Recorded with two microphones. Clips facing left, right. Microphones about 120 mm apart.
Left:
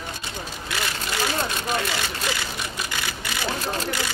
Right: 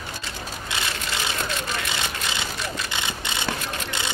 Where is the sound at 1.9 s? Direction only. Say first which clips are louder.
Left 2 dB; 20° right (ahead or behind).